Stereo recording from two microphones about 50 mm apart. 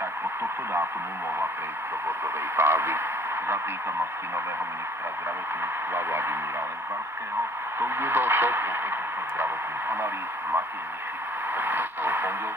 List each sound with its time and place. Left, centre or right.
2.0 s speech: right
5.9 s speech: right
7.8 s speech: right